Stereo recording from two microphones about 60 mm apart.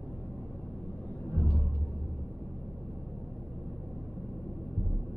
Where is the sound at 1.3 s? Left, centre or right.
Left.